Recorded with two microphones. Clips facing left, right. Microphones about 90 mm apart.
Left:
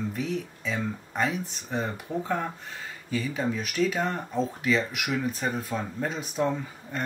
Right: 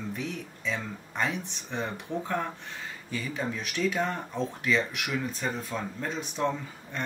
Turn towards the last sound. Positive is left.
turn(degrees=5)  # may be behind; listen again after turning